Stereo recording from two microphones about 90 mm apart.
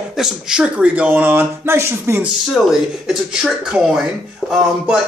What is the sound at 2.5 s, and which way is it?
Speech, 5° right (ahead or behind).